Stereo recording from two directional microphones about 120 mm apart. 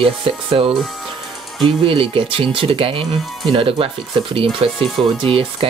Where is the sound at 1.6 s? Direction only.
50° right (ahead or behind).